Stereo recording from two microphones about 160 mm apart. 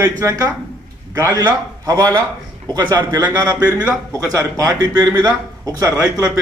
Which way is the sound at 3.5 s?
10° right (ahead or behind).